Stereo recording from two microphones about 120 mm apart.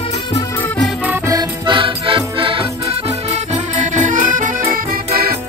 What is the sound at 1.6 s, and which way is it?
Music, 45° right (ahead or behind).